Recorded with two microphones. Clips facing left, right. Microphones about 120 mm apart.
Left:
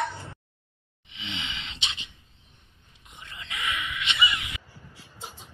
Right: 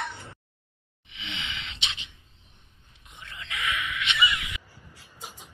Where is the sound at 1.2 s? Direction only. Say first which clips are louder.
Left 1 dB; 25° left (ahead or behind).